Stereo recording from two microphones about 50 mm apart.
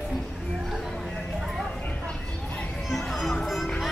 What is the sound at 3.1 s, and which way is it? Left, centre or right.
Music, centre.